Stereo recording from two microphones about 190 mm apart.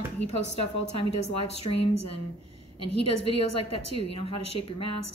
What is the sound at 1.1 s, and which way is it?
Speech, 35° left (ahead or behind).